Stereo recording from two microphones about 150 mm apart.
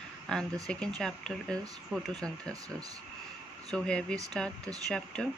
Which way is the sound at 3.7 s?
5° left (ahead or behind).